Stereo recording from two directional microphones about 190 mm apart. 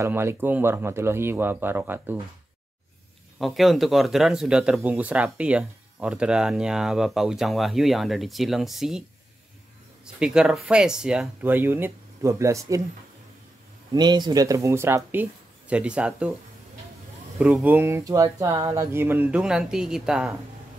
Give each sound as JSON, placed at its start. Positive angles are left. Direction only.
{"t": 0.0, "sound": "speech", "side_deg": -15}
{"t": 3.3, "sound": "speech", "side_deg": 0}
{"t": 10.1, "sound": "speech", "side_deg": -5}
{"t": 13.9, "sound": "speech", "side_deg": -20}
{"t": 17.4, "sound": "speech", "side_deg": -5}